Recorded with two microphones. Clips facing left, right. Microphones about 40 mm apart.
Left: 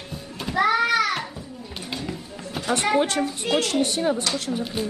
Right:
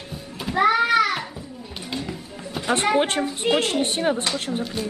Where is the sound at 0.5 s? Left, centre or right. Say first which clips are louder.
Right 2 dB; centre.